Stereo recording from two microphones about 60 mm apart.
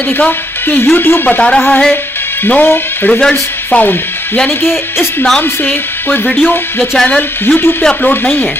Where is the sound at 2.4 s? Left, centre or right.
Left.